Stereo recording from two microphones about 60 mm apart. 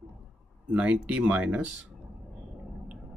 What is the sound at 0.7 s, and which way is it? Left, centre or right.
Speech, centre.